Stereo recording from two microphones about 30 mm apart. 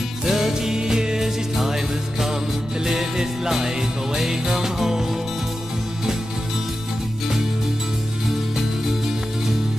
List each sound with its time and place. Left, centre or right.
0.2 s music: centre
1.7 s jingle bell: centre
3.2 s music: centre